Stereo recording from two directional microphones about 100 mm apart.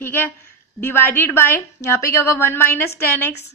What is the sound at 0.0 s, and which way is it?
A woman's voice, 20° left (ahead or behind).